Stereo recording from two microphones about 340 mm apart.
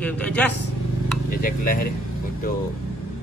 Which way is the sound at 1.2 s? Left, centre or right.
Left.